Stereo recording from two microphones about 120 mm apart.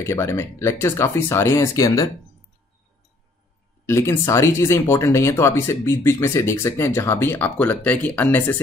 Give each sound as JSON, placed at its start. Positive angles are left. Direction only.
{"t": 0.0, "sound": "speech", "side_deg": 20}
{"t": 3.8, "sound": "speech", "side_deg": 20}